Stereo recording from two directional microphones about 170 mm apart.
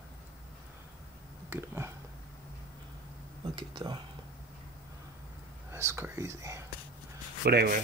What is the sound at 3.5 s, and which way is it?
Speech, 25° right (ahead or behind).